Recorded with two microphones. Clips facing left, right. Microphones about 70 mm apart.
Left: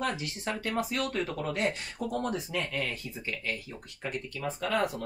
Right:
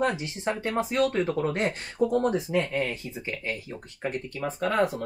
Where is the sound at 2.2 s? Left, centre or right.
Right.